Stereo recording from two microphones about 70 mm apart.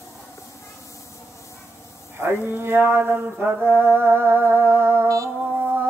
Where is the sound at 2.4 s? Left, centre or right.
Right.